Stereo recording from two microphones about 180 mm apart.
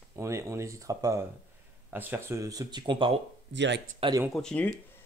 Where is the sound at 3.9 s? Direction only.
30° right (ahead or behind).